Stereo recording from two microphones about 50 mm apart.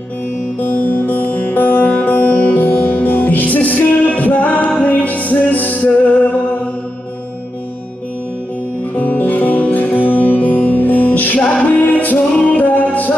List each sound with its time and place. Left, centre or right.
0.6 s music: left
8.9 s music: left